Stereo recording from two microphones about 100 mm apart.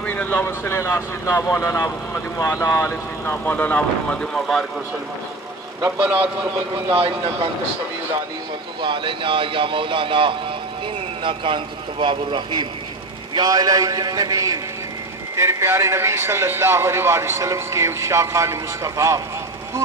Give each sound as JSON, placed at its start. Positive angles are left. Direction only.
{"t": 0.0, "sound": "a sound", "side_deg": 15}
{"t": 0.5, "sound": "speech", "side_deg": 25}
{"t": 6.9, "sound": "speech", "side_deg": -65}
{"t": 8.8, "sound": "speech", "side_deg": -55}
{"t": 13.3, "sound": "a man's voice", "side_deg": -40}
{"t": 15.3, "sound": "a man's voice", "side_deg": -25}